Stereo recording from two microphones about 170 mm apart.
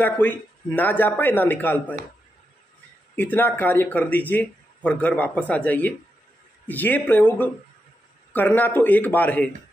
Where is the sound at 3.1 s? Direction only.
10° left (ahead or behind).